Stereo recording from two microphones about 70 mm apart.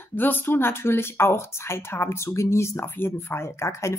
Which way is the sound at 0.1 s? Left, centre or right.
Left.